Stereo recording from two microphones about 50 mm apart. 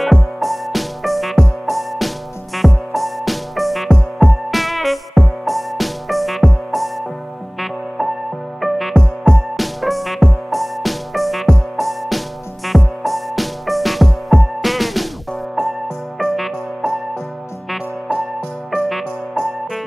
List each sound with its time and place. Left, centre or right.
0.0 s music: centre
8.5 s music: centre
16.2 s music: centre
18.8 s music: centre